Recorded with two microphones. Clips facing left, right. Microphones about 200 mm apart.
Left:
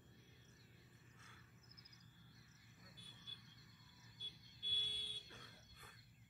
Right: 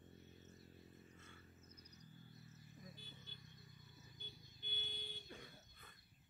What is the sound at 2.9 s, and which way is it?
Vehicle, 25° right (ahead or behind).